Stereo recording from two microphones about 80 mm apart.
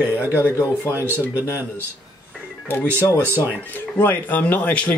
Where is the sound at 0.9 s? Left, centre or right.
Right.